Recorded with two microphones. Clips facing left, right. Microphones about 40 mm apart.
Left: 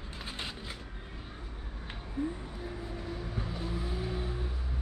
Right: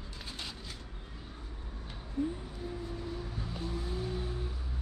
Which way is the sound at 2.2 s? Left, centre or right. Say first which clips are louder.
Right 1 dB; left.